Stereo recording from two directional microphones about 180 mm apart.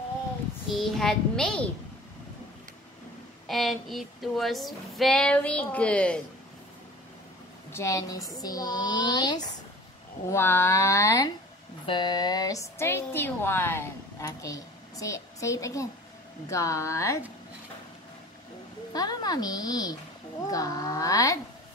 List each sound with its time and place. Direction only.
0.7 s female singing: centre (ahead or behind)
3.4 s female singing: centre (ahead or behind)
7.7 s a woman's voice: 15° left (ahead or behind)
10.3 s speech: 15° left (ahead or behind)
18.9 s a woman's voice: 20° left (ahead or behind)